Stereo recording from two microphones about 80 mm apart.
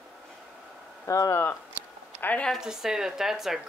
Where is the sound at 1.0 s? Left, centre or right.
Left.